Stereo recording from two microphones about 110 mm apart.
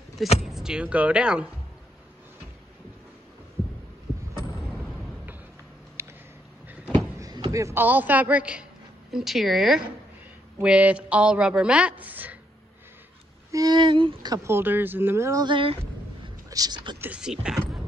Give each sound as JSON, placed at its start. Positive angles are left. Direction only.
{"t": 0.4, "sound": "a woman's voice", "side_deg": -5}
{"t": 4.8, "sound": "a sound", "side_deg": 0}
{"t": 6.0, "sound": "a sound", "side_deg": -25}
{"t": 7.2, "sound": "basketball bounce", "side_deg": -35}
{"t": 7.5, "sound": "a woman's voice", "side_deg": -25}
{"t": 13.5, "sound": "speech", "side_deg": -35}
{"t": 14.3, "sound": "speech", "side_deg": -25}
{"t": 15.4, "sound": "speech", "side_deg": -50}
{"t": 16.4, "sound": "speech", "side_deg": -35}
{"t": 17.0, "sound": "a woman's voice", "side_deg": -10}